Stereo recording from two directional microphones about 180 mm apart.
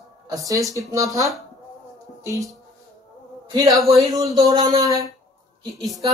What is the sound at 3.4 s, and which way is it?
Insect, 25° right (ahead or behind).